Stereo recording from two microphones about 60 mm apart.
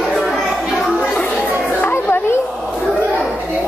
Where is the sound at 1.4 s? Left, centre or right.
Left.